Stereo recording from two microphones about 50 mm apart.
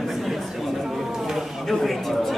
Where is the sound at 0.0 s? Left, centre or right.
Centre.